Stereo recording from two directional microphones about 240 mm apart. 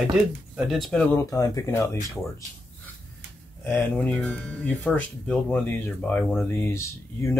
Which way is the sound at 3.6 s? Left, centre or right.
Centre.